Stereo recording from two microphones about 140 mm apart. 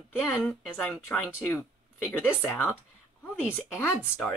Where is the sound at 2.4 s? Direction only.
15° left (ahead or behind).